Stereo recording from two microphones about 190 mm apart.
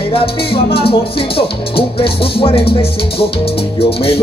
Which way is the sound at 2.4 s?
30° left (ahead or behind).